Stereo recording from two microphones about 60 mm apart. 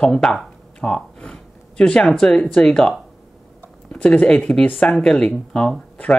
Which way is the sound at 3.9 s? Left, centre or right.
Centre.